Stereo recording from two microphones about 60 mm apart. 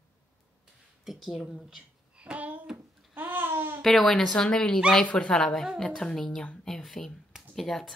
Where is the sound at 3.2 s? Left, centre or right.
Right.